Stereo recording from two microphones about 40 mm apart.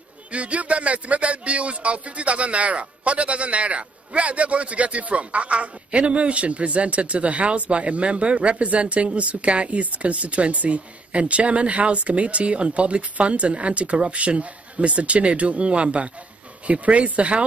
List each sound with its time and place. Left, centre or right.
0.3 s speech: right